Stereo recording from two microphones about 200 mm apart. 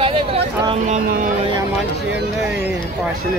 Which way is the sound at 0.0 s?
25° right (ahead or behind).